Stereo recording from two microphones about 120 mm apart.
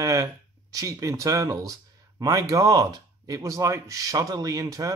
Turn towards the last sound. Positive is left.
turn(degrees=-30)  # may be behind; listen again after turning